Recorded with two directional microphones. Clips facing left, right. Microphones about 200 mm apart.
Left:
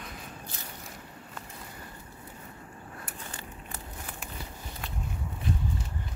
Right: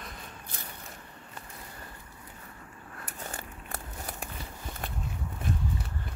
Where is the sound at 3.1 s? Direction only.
40° right (ahead or behind).